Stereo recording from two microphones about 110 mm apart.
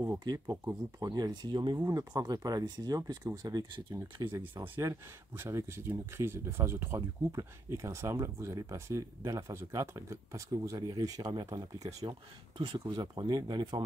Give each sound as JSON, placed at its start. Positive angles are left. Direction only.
{"t": 0.5, "sound": "speech", "side_deg": -30}
{"t": 1.9, "sound": "speech", "side_deg": -30}
{"t": 4.7, "sound": "speech", "side_deg": -20}
{"t": 7.0, "sound": "speech", "side_deg": -35}
{"t": 12.5, "sound": "speech", "side_deg": -45}